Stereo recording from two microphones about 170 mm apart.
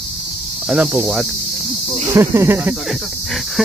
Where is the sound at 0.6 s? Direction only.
5° right (ahead or behind).